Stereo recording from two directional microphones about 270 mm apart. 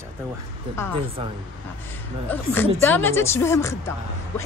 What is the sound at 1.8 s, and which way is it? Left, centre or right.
A woman's voice, centre.